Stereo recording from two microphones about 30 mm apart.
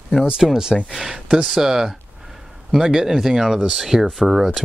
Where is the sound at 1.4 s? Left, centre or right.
Centre.